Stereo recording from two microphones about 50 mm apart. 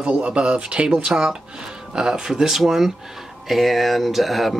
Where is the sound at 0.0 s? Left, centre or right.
Right.